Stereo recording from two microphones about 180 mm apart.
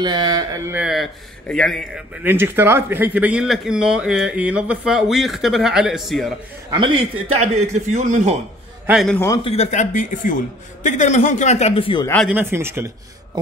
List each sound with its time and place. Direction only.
0.0 s speech: 25° right (ahead or behind)
0.7 s speech: centre (ahead or behind)
2.2 s speech: 10° right (ahead or behind)
7.3 s a man's voice: 40° right (ahead or behind)
8.8 s speech: centre (ahead or behind)
9.3 s a man's voice: 30° left (ahead or behind)
12.3 s speech: 10° right (ahead or behind)